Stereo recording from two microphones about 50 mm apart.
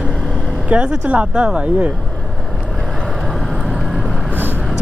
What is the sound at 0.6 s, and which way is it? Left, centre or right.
Speech, right.